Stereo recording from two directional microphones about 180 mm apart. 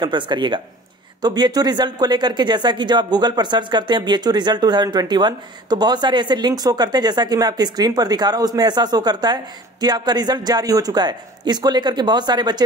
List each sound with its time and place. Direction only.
0.0 s speech: 25° right (ahead or behind)